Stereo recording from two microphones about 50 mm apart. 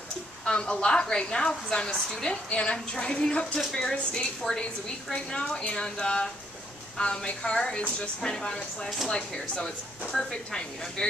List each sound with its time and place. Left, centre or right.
0.5 s a woman's voice: centre